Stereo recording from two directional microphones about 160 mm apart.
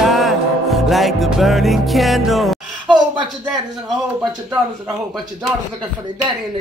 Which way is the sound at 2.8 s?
30° right (ahead or behind).